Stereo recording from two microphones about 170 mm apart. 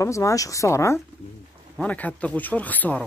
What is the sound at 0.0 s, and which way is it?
Speech, 20° left (ahead or behind).